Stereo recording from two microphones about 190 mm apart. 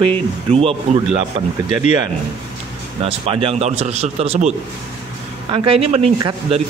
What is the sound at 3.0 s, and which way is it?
A man's voice, 30° right (ahead or behind).